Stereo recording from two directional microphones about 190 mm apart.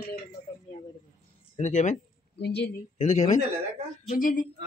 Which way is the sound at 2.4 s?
60° left (ahead or behind).